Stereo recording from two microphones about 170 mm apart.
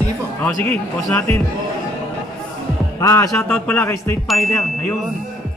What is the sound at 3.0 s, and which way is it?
Music, 20° left (ahead or behind).